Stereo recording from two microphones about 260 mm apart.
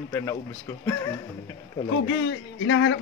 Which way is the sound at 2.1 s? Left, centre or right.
Left.